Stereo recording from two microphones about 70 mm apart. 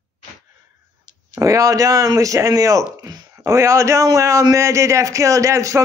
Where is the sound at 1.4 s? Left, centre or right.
Right.